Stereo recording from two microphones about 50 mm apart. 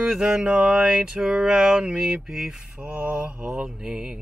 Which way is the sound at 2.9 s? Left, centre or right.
Right.